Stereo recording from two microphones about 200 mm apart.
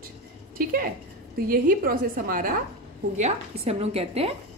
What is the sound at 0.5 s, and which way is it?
A woman's voice, 45° right (ahead or behind).